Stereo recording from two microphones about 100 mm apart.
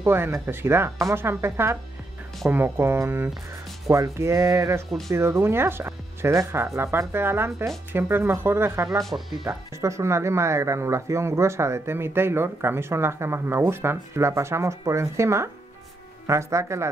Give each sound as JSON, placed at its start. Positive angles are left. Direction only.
{"t": 0.0, "sound": "speech", "side_deg": -25}
{"t": 9.5, "sound": "speech", "side_deg": -30}